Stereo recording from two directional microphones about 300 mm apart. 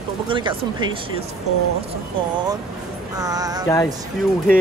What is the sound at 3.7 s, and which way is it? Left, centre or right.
Speech, centre.